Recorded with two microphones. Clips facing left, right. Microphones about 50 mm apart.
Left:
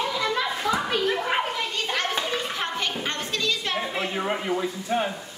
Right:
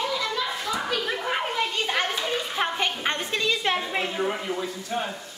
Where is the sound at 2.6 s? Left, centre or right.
Centre.